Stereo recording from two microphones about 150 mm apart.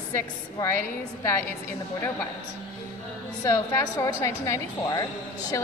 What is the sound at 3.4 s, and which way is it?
A woman's voice, 25° left (ahead or behind).